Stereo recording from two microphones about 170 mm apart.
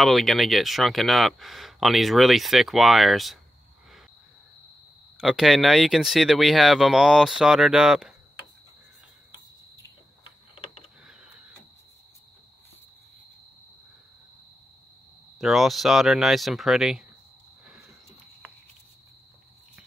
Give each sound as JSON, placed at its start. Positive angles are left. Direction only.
{"t": 0.0, "sound": "speech", "side_deg": 0}
{"t": 5.2, "sound": "speech", "side_deg": 0}
{"t": 10.5, "sound": "a sound", "side_deg": 35}
{"t": 15.3, "sound": "speech", "side_deg": 0}